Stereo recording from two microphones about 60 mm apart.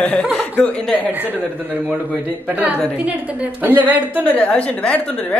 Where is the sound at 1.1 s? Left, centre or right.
Right.